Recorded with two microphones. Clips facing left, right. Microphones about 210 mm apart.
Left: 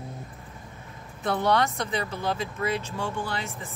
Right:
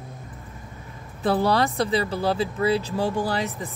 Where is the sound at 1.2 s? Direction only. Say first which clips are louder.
Right 3 dB; 35° right (ahead or behind).